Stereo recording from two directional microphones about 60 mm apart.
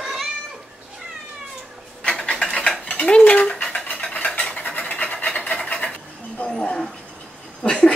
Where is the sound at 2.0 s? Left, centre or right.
Centre.